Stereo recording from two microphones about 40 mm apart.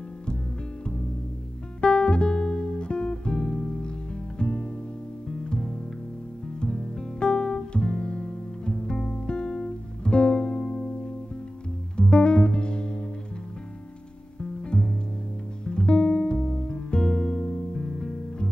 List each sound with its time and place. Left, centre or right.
1.8 s guitar: left
4.4 s music: left
6.6 s guitar: left
12.0 s music: left
14.4 s music: left